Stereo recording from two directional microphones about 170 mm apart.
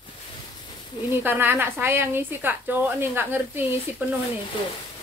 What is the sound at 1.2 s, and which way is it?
A woman's voice, 10° right (ahead or behind).